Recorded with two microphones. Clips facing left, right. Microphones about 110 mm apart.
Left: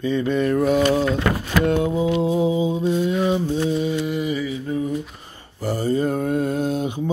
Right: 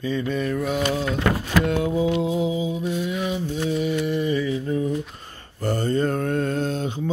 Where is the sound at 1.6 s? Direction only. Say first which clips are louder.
Left 2 dB; 25° left (ahead or behind).